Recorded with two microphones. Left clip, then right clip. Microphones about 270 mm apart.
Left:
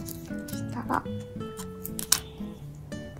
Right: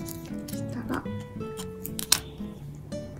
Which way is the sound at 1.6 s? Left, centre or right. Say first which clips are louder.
Right 2 dB; centre.